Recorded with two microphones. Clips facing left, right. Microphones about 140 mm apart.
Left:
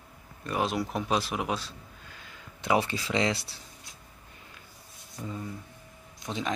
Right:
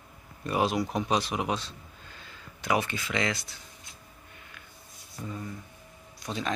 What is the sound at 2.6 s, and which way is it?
Speech, 25° left (ahead or behind).